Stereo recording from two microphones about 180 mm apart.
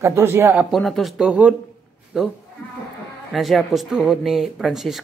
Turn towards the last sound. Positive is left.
turn(degrees=0)  # may be behind; listen again after turning